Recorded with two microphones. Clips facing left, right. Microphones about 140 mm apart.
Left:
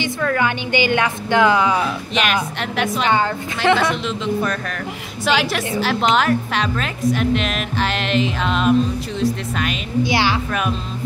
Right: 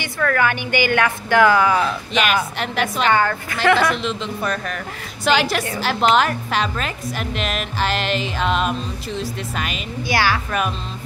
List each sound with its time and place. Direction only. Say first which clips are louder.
0.0 s a woman's voice: even; 20° left (ahead or behind)
1.8 s a woman's voice: right 1 dB; centre (ahead or behind)
3.1 s a woman's voice: right 1 dB; 20° left (ahead or behind)
3.9 s a woman's voice: left 3 dB; centre (ahead or behind)
10.0 s a woman's voice: right 1 dB; 20° left (ahead or behind)